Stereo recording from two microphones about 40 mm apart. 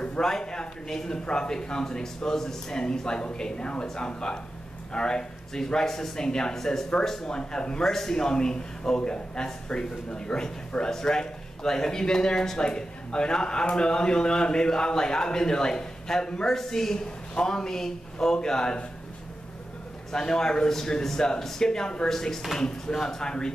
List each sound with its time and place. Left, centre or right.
0.2 s speech: centre
7.8 s speech: centre
8.1 s speech: centre
20.1 s speech: centre